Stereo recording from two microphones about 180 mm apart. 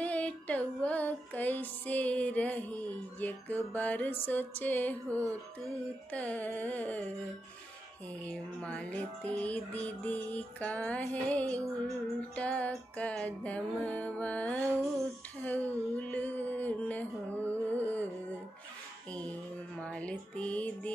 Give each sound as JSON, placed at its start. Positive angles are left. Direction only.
{"t": 0.0, "sound": "music", "side_deg": 5}
{"t": 5.1, "sound": "music", "side_deg": -15}
{"t": 6.1, "sound": "music", "side_deg": 10}
{"t": 8.3, "sound": "music", "side_deg": 5}
{"t": 15.4, "sound": "a sound", "side_deg": 10}
{"t": 19.0, "sound": "music", "side_deg": 5}